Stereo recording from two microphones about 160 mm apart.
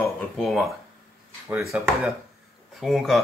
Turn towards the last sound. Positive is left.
turn(degrees=0)  # may be behind; listen again after turning